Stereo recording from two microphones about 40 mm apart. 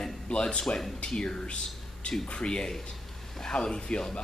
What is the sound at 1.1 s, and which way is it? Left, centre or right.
Speech, centre.